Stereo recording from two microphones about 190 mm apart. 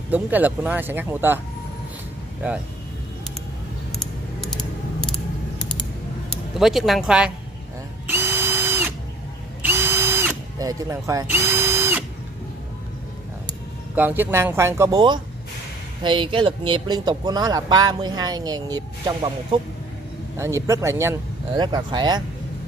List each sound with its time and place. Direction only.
0.1 s speech: 10° right (ahead or behind)
4.0 s a sound: 5° left (ahead or behind)
6.6 s speech: centre (ahead or behind)
8.1 s drill: 10° right (ahead or behind)
13.9 s speech: 10° right (ahead or behind)